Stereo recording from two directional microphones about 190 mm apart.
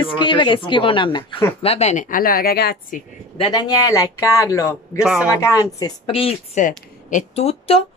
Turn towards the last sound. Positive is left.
turn(degrees=30)  # may be behind; listen again after turning